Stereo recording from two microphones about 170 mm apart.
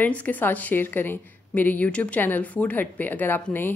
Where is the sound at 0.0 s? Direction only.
10° left (ahead or behind).